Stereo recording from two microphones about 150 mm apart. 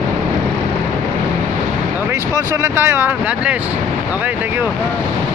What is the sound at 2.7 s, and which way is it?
Speech, 15° right (ahead or behind).